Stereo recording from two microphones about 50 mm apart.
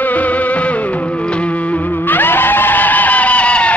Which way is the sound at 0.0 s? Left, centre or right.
Left.